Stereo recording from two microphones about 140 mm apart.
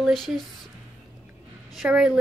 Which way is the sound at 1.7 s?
5° right (ahead or behind).